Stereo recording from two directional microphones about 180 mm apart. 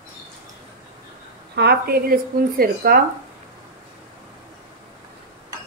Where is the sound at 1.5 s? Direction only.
60° right (ahead or behind).